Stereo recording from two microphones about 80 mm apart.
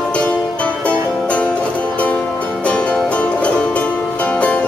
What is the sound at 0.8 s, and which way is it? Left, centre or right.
Music, centre.